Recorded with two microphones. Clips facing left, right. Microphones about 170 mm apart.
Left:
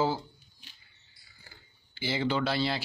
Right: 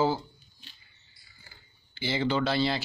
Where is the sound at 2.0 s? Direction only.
5° left (ahead or behind).